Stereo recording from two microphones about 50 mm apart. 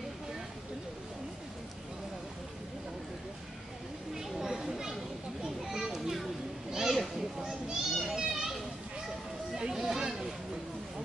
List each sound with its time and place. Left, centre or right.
4.2 s children playing: centre
7.4 s children playing: centre
9.6 s a sound: centre